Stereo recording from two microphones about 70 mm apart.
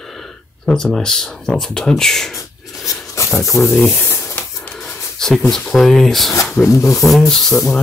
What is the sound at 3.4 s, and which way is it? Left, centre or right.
Speech, centre.